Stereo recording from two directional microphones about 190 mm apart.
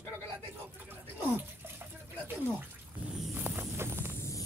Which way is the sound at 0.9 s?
10° right (ahead or behind).